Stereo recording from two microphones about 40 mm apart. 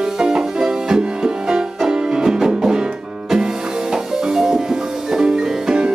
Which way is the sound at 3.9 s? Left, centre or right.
Centre.